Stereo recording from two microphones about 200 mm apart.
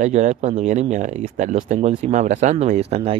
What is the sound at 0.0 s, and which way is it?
Speech, 40° right (ahead or behind).